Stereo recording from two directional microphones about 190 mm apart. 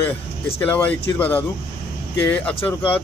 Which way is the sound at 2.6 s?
10° left (ahead or behind).